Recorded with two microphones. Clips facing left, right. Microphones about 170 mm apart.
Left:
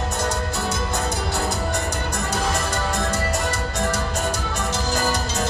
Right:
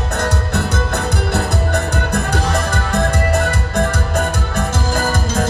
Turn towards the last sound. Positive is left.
turn(degrees=-50)  # may be behind; listen again after turning